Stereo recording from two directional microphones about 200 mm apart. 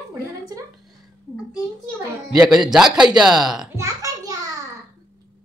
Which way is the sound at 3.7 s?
15° right (ahead or behind).